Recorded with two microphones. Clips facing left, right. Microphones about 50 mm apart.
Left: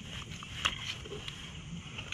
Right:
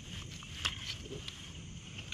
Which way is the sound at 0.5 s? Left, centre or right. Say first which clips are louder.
Left 4 dB; left.